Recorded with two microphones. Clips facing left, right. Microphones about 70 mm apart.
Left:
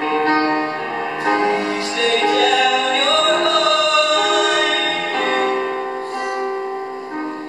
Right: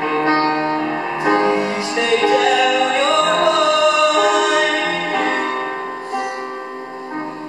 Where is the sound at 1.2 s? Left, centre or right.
Right.